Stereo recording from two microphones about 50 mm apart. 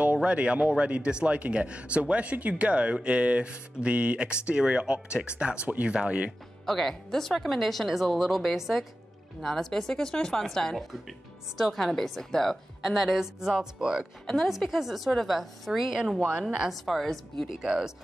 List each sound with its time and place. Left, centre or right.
0.0 s a man's voice: right
6.6 s speech: centre
10.9 s speech: centre
14.2 s speech: centre
16.6 s speech: centre
17.5 s speech: centre